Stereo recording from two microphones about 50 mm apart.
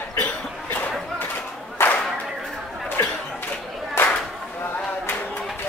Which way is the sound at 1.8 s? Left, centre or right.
Left.